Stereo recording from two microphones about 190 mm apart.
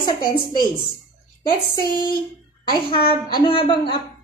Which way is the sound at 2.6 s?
25° left (ahead or behind).